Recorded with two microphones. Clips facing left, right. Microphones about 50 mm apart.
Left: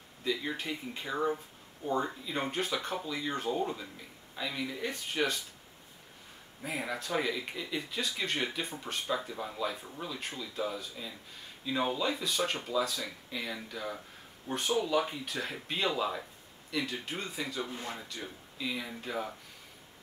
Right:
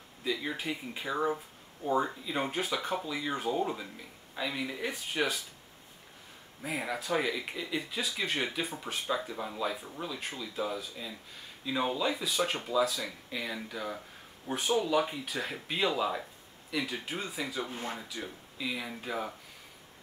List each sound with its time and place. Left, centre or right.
0.2 s speech: centre
6.6 s speech: centre
17.6 s speech: right
17.9 s speech: centre